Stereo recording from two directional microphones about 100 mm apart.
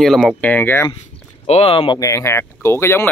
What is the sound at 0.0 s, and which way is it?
Speech, centre (ahead or behind).